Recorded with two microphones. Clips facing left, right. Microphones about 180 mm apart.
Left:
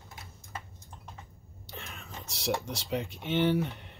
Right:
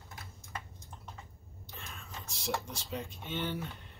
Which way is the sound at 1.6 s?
75° left (ahead or behind).